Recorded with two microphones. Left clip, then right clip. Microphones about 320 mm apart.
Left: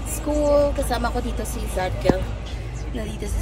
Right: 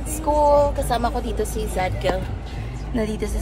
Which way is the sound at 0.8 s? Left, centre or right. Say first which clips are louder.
Right 3 dB; centre.